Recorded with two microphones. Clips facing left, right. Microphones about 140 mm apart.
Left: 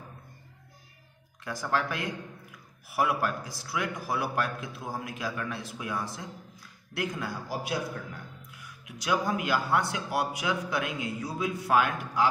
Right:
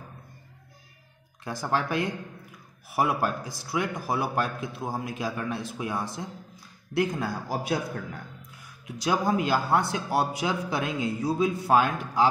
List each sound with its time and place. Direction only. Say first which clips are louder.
1.4 s a man's voice: right 2 dB; 30° right (ahead or behind); by 8.0 s 45° right (ahead or behind)
8.8 s a man's voice: right 3 dB; 30° right (ahead or behind)